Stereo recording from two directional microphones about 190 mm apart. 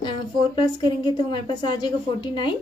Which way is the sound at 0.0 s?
25° left (ahead or behind).